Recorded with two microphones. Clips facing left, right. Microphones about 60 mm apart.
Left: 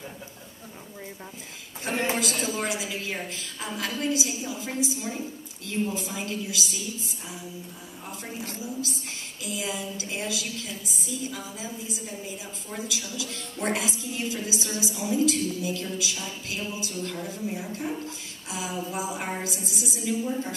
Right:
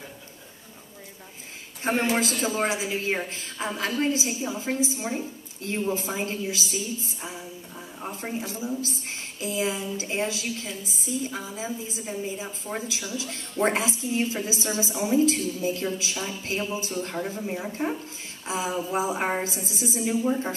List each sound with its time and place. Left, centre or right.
1.9 s a woman's voice: right